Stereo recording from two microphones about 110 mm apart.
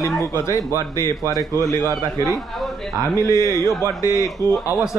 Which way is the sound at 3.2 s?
25° left (ahead or behind).